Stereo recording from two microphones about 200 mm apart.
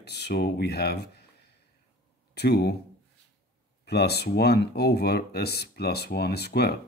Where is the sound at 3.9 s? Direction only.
55° left (ahead or behind).